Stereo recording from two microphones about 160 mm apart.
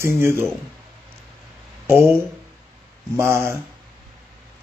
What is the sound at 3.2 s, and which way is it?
Speech, 15° right (ahead or behind).